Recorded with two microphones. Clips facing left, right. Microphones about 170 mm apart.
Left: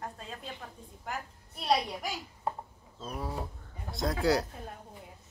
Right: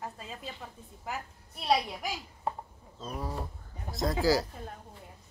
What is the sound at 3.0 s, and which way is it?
Speech, centre (ahead or behind).